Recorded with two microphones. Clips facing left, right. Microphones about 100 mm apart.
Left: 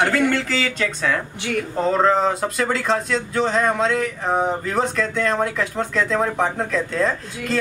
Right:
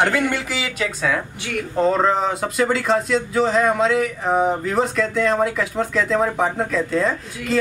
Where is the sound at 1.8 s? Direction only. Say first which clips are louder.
Even; centre (ahead or behind).